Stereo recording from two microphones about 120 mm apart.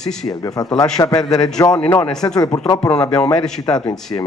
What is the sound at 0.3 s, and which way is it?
Speech, 30° left (ahead or behind).